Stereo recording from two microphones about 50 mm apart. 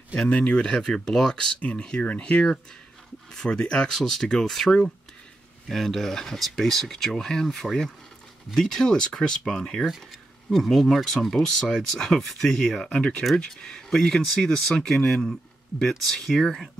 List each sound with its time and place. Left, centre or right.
0.3 s speech: left